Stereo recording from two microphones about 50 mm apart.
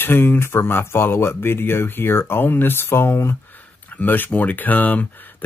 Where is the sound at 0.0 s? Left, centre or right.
Left.